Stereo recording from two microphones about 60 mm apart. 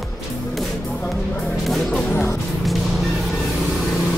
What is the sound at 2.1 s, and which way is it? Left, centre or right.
Speech, left.